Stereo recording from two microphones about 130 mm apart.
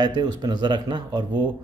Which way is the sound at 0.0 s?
35° right (ahead or behind).